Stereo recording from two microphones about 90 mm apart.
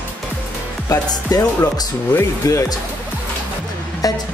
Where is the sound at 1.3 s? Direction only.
45° left (ahead or behind).